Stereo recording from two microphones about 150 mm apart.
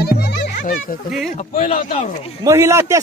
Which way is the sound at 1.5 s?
40° left (ahead or behind).